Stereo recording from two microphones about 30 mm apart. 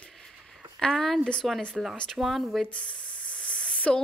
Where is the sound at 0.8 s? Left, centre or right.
Centre.